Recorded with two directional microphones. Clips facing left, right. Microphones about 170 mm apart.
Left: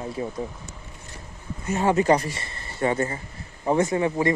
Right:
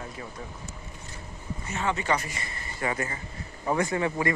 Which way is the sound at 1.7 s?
45° left (ahead or behind).